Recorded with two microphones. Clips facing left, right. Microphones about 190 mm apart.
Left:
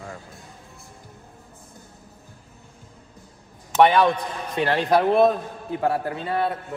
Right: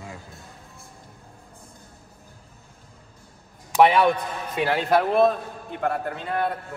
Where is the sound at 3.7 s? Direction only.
5° right (ahead or behind).